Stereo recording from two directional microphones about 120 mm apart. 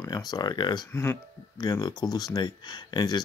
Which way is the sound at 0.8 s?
20° left (ahead or behind).